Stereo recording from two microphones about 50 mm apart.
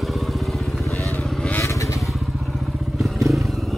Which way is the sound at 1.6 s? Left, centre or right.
Left.